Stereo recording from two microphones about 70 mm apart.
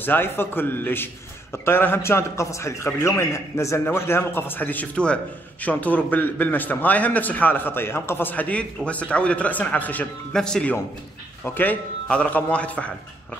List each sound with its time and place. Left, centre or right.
0.0 s a man's voice: left
10.3 s a man's voice: centre
11.4 s a man's voice: left